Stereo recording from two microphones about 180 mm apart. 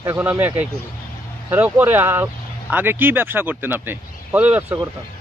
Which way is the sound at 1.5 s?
10° right (ahead or behind).